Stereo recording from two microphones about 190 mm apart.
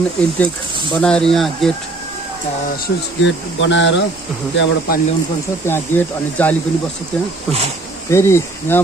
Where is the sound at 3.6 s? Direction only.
75° left (ahead or behind).